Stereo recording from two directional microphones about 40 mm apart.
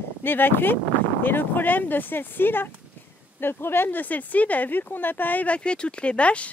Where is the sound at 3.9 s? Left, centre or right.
Left.